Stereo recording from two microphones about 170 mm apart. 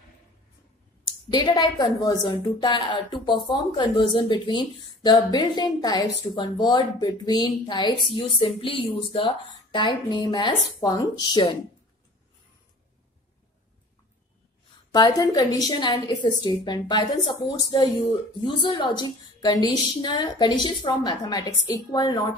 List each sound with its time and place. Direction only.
1.3 s speech: 25° left (ahead or behind)
14.9 s speech: 25° left (ahead or behind)